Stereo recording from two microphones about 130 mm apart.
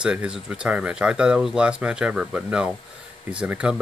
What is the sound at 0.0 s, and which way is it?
Speech, 5° right (ahead or behind).